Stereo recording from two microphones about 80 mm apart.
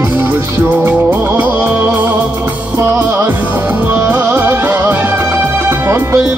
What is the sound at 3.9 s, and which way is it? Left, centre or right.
Music, right.